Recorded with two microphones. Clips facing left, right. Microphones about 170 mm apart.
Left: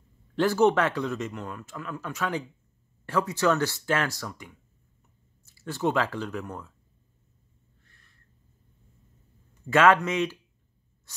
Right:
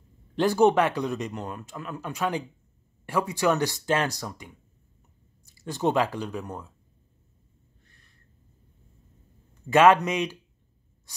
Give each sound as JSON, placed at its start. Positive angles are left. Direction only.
{"t": 0.4, "sound": "speech", "side_deg": -15}
{"t": 9.7, "sound": "speech", "side_deg": -15}